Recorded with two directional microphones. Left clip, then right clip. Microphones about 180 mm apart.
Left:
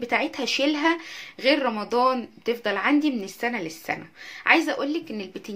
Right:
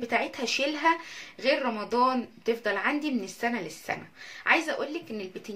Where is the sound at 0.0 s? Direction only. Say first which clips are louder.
Left 4 dB; 35° left (ahead or behind).